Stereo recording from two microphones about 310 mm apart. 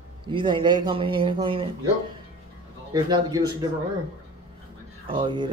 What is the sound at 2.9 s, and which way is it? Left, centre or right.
Speech, centre.